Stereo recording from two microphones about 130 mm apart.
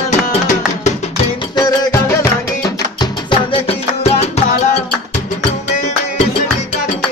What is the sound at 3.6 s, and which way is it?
Music, 50° left (ahead or behind).